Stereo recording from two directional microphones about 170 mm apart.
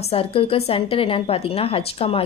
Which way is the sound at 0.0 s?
35° left (ahead or behind).